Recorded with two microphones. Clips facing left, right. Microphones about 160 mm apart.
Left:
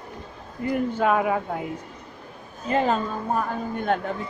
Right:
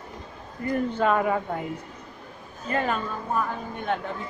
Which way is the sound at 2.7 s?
25° left (ahead or behind).